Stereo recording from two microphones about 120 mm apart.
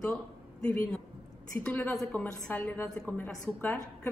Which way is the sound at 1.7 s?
15° left (ahead or behind).